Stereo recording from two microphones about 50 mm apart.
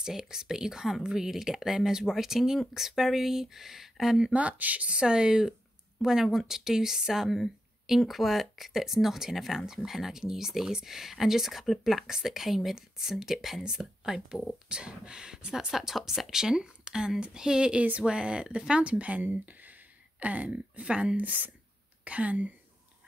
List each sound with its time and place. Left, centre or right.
0.0 s speech: centre
4.3 s speech: right
15.7 s speech: centre; by 22.5 s right